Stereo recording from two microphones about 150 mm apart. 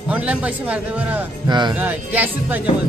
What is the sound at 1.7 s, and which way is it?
Speech, 10° right (ahead or behind).